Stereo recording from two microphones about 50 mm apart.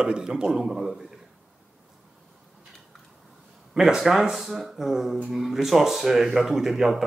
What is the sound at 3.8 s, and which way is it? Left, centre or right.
Speech, centre.